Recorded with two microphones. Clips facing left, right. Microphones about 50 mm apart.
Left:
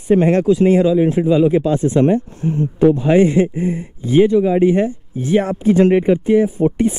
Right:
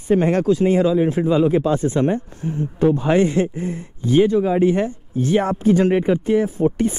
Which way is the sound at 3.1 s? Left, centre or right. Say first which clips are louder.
Left 4 dB; centre.